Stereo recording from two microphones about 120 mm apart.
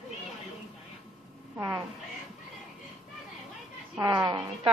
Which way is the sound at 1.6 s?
20° right (ahead or behind).